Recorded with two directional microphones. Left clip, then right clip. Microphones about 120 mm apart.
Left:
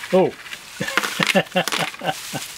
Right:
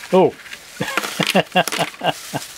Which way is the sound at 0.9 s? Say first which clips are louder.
Left 1 dB; centre (ahead or behind).